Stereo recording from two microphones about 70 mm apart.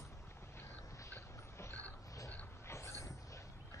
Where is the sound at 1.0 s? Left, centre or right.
Left.